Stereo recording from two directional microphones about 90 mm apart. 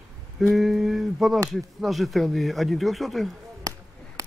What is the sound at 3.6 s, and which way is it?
Finger snapping, 40° right (ahead or behind).